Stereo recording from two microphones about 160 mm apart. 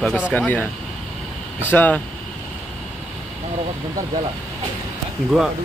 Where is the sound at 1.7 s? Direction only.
10° left (ahead or behind).